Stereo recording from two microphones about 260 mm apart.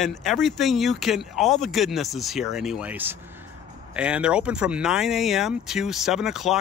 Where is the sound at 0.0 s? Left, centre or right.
Centre.